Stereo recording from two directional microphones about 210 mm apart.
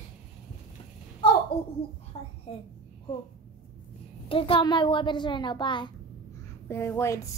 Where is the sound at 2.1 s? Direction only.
30° left (ahead or behind).